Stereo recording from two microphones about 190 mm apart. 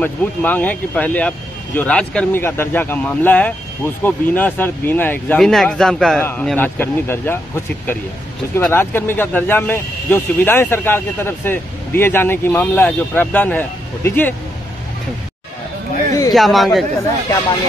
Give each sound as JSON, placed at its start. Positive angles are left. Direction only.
{"t": 0.0, "sound": "speech", "side_deg": 10}
{"t": 16.1, "sound": "a sound", "side_deg": 20}
{"t": 16.3, "sound": "speech", "side_deg": 0}